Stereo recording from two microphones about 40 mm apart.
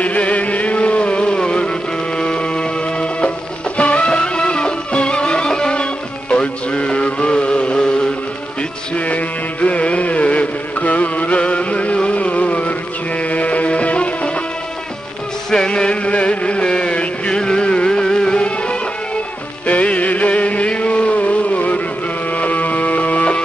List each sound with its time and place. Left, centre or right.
0.0 s chant: left
2.1 s music: left
7.8 s a sound: left
8.9 s music: left
15.7 s music: left